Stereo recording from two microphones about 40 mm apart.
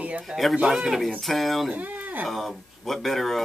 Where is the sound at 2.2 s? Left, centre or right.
Centre.